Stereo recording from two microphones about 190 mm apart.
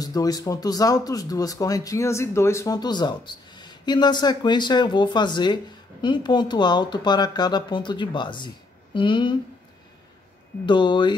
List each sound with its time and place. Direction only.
0.0 s speech: 20° left (ahead or behind)
10.6 s speech: 25° left (ahead or behind)